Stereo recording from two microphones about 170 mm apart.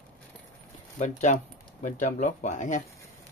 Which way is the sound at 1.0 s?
45° left (ahead or behind).